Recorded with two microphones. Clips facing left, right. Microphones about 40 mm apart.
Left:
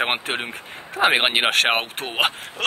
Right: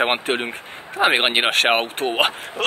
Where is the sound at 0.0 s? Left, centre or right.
Centre.